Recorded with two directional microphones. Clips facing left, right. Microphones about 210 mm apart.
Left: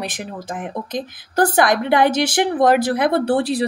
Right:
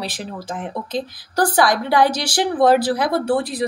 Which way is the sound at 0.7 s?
20° left (ahead or behind).